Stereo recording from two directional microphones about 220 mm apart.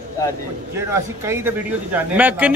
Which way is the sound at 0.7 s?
10° right (ahead or behind).